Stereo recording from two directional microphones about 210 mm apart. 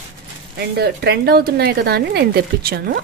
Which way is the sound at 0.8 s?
50° right (ahead or behind).